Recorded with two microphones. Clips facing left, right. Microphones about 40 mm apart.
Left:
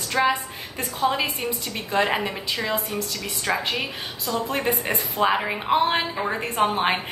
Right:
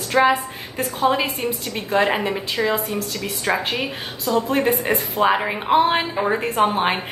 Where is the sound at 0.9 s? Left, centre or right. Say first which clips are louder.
Right 3 dB; centre.